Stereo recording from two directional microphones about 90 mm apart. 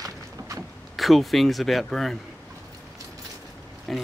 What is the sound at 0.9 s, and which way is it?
Speech, centre (ahead or behind).